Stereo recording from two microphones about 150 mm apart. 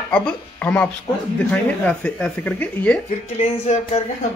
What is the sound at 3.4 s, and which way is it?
Speech, 50° left (ahead or behind).